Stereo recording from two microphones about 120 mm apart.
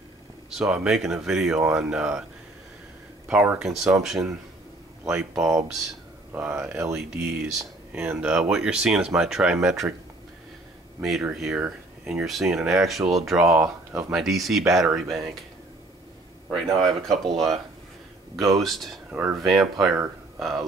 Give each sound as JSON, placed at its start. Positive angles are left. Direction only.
{"t": 0.5, "sound": "speech", "side_deg": -5}
{"t": 3.3, "sound": "speech", "side_deg": -10}
{"t": 5.4, "sound": "speech", "side_deg": -25}
{"t": 6.3, "sound": "speech", "side_deg": -10}
{"t": 11.0, "sound": "speech", "side_deg": -5}
{"t": 13.6, "sound": "speech", "side_deg": -25}
{"t": 14.1, "sound": "speech", "side_deg": 0}
{"t": 16.4, "sound": "speech", "side_deg": 0}
{"t": 18.6, "sound": "speech", "side_deg": 0}
{"t": 19.0, "sound": "speech", "side_deg": -10}
{"t": 19.4, "sound": "speech", "side_deg": 0}